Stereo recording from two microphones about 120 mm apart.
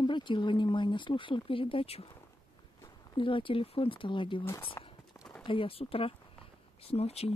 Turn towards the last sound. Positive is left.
turn(degrees=60)  # may be behind; listen again after turning